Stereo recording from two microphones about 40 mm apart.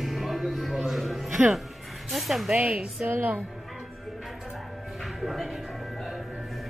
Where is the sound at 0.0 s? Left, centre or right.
Centre.